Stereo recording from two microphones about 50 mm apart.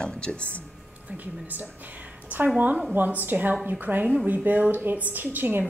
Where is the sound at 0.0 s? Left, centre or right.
Left.